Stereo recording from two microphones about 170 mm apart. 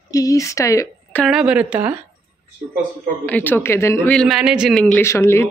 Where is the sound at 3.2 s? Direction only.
10° left (ahead or behind).